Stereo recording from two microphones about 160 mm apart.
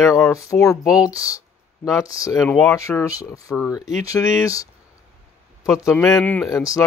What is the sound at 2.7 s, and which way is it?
Speech, 20° left (ahead or behind).